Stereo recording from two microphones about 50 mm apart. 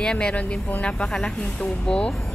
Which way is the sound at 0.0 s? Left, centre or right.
Centre.